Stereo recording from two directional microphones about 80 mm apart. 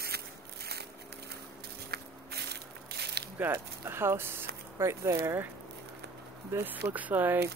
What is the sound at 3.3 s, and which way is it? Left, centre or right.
Speech, right.